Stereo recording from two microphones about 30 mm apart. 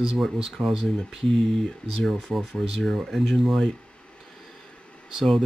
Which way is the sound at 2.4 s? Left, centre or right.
Centre.